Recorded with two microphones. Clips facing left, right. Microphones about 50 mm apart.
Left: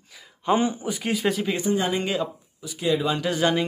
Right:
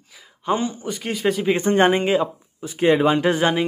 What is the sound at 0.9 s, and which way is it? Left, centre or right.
Speech, centre.